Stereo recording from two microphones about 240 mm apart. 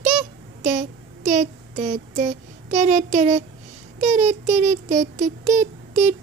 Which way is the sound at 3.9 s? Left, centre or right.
Right.